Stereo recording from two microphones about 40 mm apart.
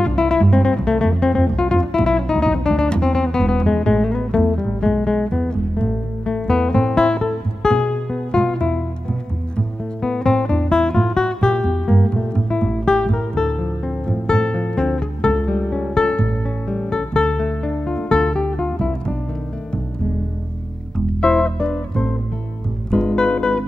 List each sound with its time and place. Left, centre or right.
0.0 s music: centre
21.2 s music: left